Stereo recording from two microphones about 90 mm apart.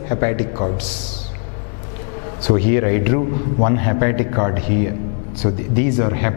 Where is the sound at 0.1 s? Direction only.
15° left (ahead or behind).